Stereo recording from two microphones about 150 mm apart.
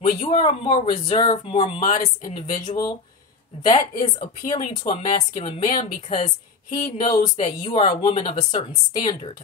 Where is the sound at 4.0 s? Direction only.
55° left (ahead or behind).